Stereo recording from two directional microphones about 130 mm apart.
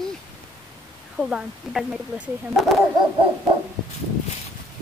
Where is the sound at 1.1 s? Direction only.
5° right (ahead or behind).